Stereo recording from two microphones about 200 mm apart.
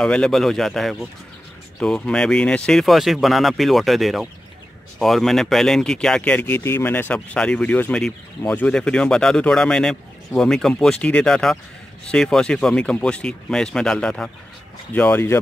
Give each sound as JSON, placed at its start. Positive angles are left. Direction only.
{"t": 0.0, "sound": "speech", "side_deg": 5}